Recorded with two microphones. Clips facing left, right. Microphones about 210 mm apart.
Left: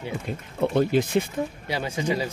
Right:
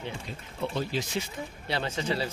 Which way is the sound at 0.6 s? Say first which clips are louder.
Left 10 dB; 55° left (ahead or behind).